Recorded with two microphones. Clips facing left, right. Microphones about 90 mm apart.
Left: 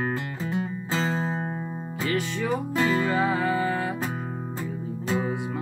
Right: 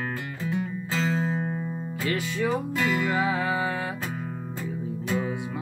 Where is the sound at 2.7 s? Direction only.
30° left (ahead or behind).